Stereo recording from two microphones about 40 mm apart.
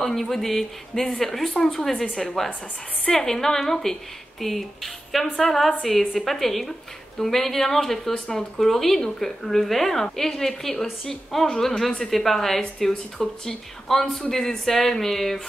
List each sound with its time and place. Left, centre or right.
0.0 s speech: centre
8.1 s speech: left
8.5 s speech: centre